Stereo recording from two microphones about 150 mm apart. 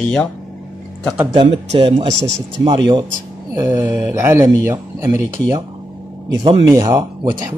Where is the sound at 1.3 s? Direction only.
35° right (ahead or behind).